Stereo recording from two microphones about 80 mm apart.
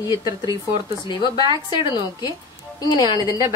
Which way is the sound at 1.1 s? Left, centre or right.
Left.